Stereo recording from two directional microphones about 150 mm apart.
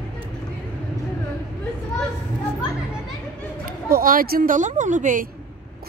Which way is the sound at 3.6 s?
75° right (ahead or behind).